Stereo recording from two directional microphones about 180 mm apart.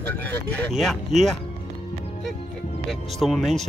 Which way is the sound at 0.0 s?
10° left (ahead or behind).